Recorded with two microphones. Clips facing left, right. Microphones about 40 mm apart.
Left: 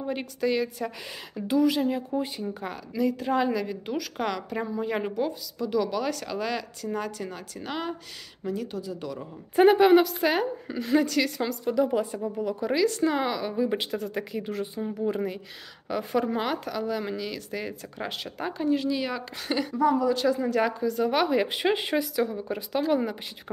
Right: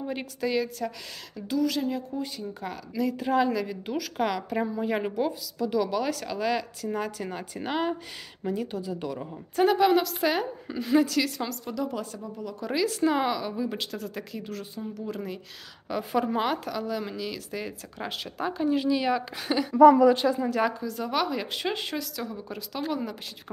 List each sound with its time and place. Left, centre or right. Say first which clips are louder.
0.0 s a woman's voice: left 2 dB; centre; by 2.5 s left
2.6 s a woman's voice: left 2 dB; centre
7.2 s speech: right 3 dB; centre
9.6 s a woman's voice: left 4 dB; centre
12.7 s a woman's voice: even; centre
15.9 s a woman's voice: even; centre